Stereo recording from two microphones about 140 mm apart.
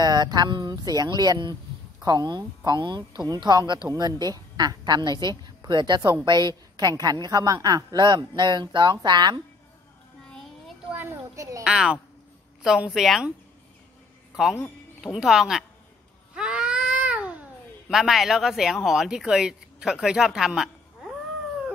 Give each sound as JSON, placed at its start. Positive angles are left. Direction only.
{"t": 0.0, "sound": "a woman's voice", "side_deg": -30}
{"t": 11.0, "sound": "a child's voice", "side_deg": -20}
{"t": 11.6, "sound": "a woman's voice", "side_deg": -5}
{"t": 14.3, "sound": "a woman's voice", "side_deg": -5}
{"t": 16.3, "sound": "baby cry", "side_deg": -5}
{"t": 17.8, "sound": "speech", "side_deg": 0}